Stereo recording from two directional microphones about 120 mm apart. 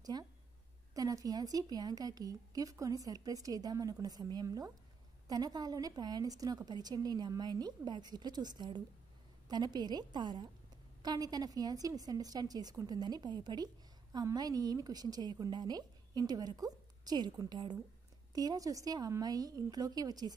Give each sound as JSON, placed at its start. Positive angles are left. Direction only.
{"t": 0.0, "sound": "speech", "side_deg": -30}